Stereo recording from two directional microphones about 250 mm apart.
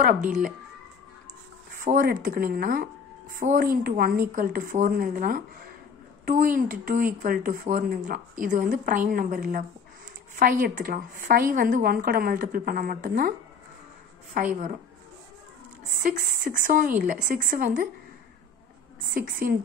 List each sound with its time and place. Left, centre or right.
1.8 s a woman's voice: right
16.0 s a woman's voice: right
19.0 s a woman's voice: right